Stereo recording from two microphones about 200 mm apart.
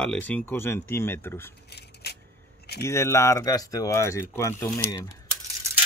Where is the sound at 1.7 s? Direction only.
55° left (ahead or behind).